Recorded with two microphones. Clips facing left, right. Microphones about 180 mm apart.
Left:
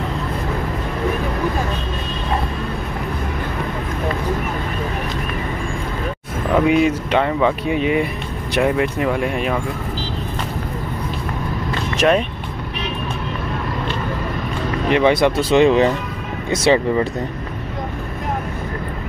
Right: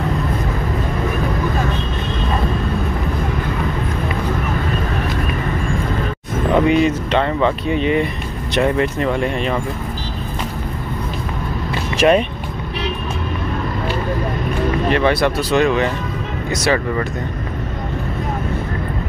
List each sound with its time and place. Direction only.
6.5 s speech: 5° left (ahead or behind)
12.0 s speech: centre (ahead or behind)
14.9 s speech: 15° left (ahead or behind)